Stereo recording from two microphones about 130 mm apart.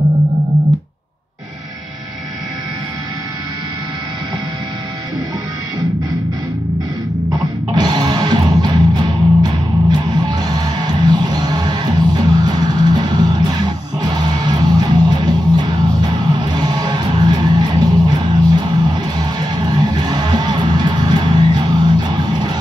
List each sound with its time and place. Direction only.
7.7 s music: 30° right (ahead or behind)